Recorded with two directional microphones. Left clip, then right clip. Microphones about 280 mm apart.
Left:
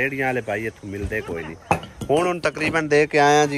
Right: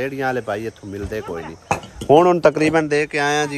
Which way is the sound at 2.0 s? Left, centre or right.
Right.